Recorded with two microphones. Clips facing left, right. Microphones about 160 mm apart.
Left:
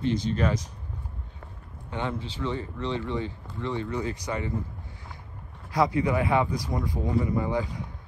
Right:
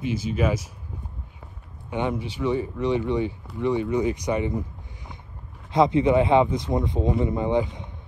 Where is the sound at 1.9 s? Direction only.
15° right (ahead or behind).